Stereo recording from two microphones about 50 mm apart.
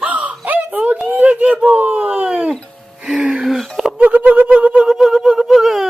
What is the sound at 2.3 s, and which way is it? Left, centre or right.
Music, centre.